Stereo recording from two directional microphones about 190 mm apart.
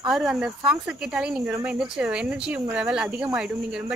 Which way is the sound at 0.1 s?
5° right (ahead or behind).